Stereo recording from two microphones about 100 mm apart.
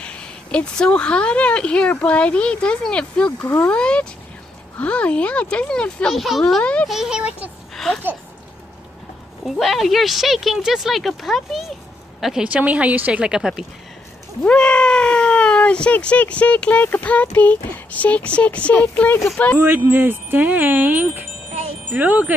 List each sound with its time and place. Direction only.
0.0 s speech: 10° left (ahead or behind)
6.6 s speech: 10° left (ahead or behind)
6.9 s speech: 5° right (ahead or behind)
7.7 s a sound: 5° left (ahead or behind)
9.6 s a woman's voice: centre (ahead or behind)
12.4 s speech: 15° right (ahead or behind)
14.4 s speech: 10° left (ahead or behind)
19.6 s speech: 20° right (ahead or behind)